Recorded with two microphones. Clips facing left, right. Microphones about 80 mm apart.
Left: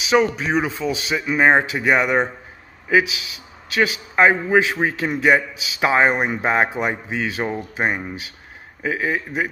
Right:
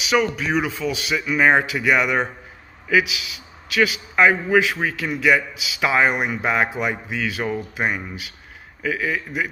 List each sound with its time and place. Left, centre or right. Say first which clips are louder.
0.0 s a man's voice: left 3 dB; left